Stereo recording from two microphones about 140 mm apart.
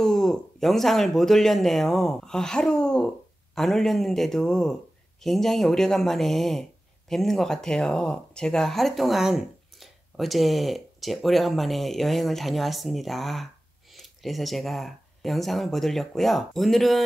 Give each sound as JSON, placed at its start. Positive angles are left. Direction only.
{"t": 0.0, "sound": "speech", "side_deg": 5}